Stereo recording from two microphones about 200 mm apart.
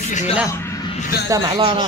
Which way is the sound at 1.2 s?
20° right (ahead or behind).